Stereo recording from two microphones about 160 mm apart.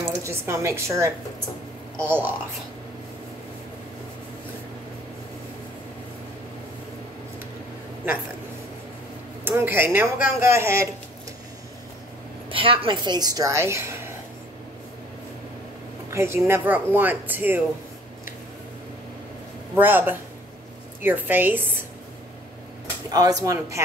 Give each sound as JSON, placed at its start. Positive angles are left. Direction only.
{"t": 0.0, "sound": "a woman's voice", "side_deg": -15}
{"t": 9.4, "sound": "speech", "side_deg": -15}
{"t": 12.4, "sound": "a woman's voice", "side_deg": -35}
{"t": 16.1, "sound": "speech", "side_deg": -15}
{"t": 19.7, "sound": "speech", "side_deg": -10}
{"t": 23.1, "sound": "a woman's voice", "side_deg": -25}